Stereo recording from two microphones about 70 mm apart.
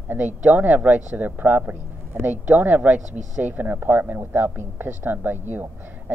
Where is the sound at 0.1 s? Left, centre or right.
Right.